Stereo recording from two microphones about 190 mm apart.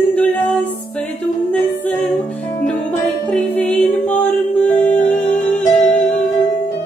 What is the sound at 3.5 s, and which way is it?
Music, 35° left (ahead or behind).